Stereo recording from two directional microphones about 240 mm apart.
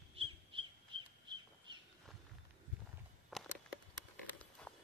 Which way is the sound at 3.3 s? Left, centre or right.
Centre.